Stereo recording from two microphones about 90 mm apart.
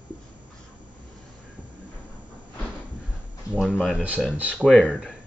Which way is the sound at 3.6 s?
5° left (ahead or behind).